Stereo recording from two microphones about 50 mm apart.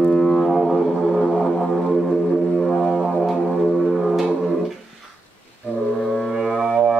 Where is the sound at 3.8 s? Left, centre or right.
Centre.